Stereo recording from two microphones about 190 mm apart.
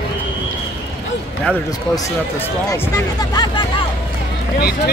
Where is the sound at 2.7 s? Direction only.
15° left (ahead or behind).